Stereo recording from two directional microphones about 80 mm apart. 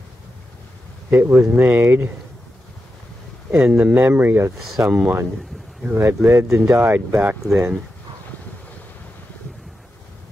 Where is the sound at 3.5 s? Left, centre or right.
Centre.